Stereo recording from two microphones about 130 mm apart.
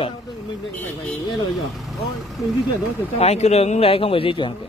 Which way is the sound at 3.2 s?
55° left (ahead or behind).